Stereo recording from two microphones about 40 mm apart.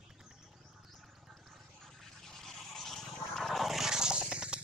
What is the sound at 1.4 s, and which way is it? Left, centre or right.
Toothbrush, centre.